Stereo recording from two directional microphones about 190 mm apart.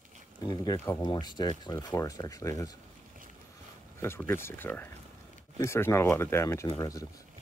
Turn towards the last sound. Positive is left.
turn(degrees=20)  # may be behind; listen again after turning